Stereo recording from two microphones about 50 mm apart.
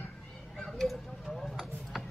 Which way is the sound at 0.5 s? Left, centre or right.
Centre.